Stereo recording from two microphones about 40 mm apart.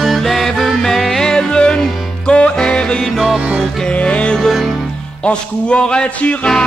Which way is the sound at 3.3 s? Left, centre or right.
Right.